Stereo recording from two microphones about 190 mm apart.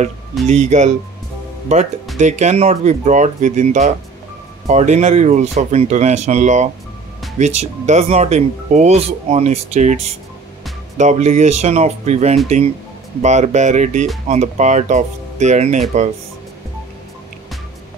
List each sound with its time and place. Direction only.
0.5 s speech: 35° right (ahead or behind)
2.1 s speech: 40° right (ahead or behind)